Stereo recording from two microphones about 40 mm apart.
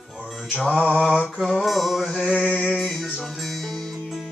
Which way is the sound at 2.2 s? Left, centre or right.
Centre.